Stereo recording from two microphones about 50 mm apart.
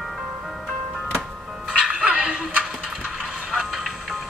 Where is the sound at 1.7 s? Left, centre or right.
Right; by 4.2 s centre.